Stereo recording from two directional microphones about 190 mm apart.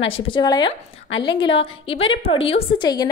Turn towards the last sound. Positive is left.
turn(degrees=20)  # may be behind; listen again after turning